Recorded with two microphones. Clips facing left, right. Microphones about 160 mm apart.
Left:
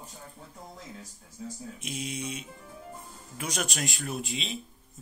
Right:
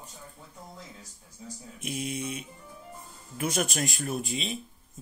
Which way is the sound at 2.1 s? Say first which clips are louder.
Right 2 dB; 55° right (ahead or behind).